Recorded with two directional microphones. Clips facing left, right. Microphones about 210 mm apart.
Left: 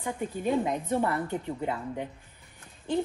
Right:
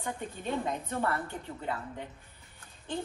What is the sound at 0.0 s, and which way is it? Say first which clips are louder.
A woman's voice: left 6 dB; 15° left (ahead or behind).